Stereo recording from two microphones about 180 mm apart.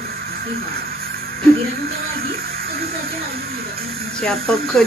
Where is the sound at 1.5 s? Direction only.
55° right (ahead or behind).